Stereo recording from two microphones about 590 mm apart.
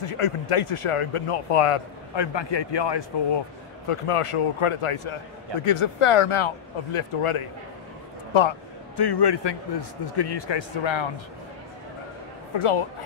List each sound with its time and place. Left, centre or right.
0.0 s speech: left
2.1 s a man's voice: left
3.9 s a man's voice: left
12.5 s speech: left